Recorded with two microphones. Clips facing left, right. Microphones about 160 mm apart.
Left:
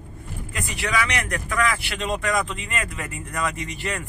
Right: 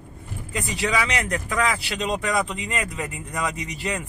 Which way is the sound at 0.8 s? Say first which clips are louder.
Right 1 dB; 20° right (ahead or behind).